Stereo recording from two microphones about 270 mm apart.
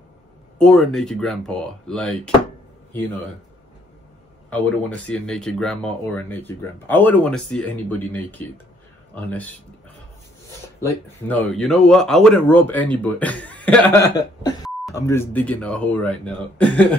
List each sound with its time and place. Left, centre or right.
0.6 s speech: centre
4.5 s speech: centre
10.8 s speech: centre